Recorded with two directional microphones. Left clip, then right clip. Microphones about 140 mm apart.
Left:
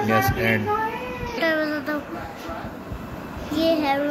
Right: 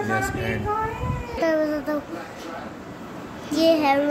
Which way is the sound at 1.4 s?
40° right (ahead or behind).